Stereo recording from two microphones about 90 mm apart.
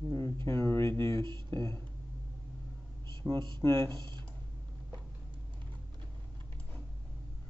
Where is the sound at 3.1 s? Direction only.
60° right (ahead or behind).